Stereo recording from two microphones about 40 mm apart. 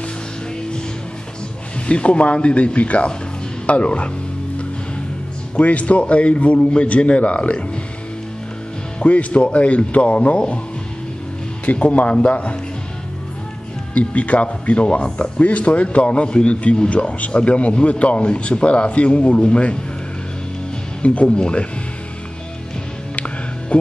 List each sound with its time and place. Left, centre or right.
1.9 s speech: left
5.6 s speech: left
9.0 s speech: left
11.6 s speech: left
13.9 s a man's voice: left
21.0 s speech: left
23.1 s music: left